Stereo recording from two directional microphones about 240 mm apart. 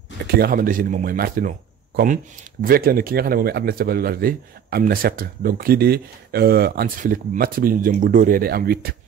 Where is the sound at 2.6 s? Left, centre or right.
Right.